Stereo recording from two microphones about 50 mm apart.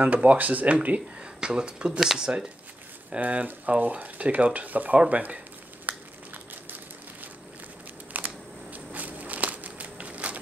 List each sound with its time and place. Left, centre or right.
0.0 s speech: right
3.2 s speech: right
5.9 s crumpling: right
8.2 s camera: right
8.7 s a sound: right